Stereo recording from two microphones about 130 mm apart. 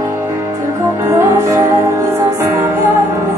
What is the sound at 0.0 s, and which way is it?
Music, 20° right (ahead or behind).